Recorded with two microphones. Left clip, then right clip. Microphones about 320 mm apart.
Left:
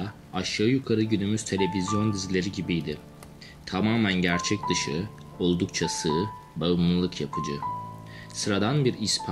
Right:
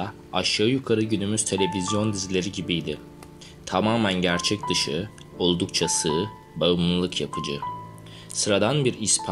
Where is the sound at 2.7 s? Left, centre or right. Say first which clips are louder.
Right 3 dB; right.